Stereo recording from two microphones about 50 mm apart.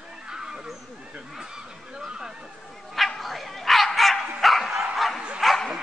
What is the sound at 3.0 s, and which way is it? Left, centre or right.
Bow-wow, centre.